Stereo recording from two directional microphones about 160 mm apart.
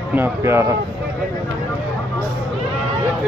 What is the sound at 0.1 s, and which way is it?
Speech, 15° right (ahead or behind).